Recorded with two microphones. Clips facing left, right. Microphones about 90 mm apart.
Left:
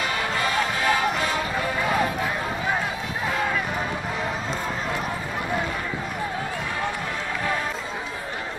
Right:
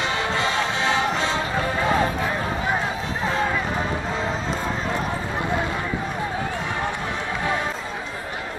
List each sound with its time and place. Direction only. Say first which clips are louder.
0.0 s music: right 2 dB; 25° right (ahead or behind)